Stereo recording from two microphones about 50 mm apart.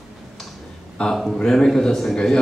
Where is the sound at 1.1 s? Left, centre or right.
Centre.